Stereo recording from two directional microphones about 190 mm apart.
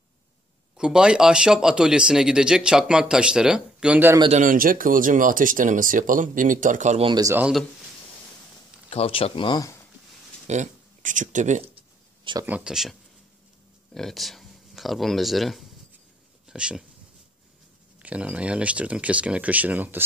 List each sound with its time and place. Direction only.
0.7 s speech: 5° right (ahead or behind)
4.2 s speech: 40° right (ahead or behind)
7.1 s speech: 20° right (ahead or behind)
7.3 s speech: 5° right (ahead or behind)
8.9 s speech: 30° left (ahead or behind)
10.4 s speech: 40° right (ahead or behind)
12.4 s speech: 5° right (ahead or behind)
13.9 s speech: centre (ahead or behind)
18.0 s speech: 5° right (ahead or behind)